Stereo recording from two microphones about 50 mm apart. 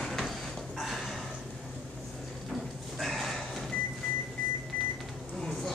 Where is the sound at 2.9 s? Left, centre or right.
Centre.